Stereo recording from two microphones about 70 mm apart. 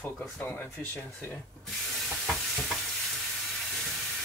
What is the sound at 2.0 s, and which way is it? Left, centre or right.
Stir, centre.